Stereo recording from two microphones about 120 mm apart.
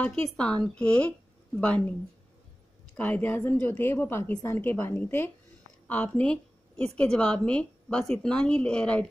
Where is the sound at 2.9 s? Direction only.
15° left (ahead or behind).